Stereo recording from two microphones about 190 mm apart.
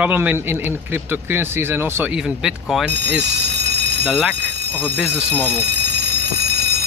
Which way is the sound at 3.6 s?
65° right (ahead or behind).